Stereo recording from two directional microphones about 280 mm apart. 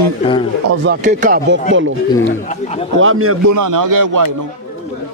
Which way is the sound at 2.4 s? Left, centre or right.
Left.